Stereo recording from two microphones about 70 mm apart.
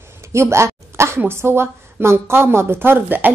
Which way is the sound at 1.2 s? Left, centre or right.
Right.